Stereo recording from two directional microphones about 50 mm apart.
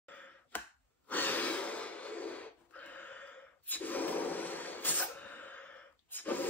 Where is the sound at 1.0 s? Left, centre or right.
Left.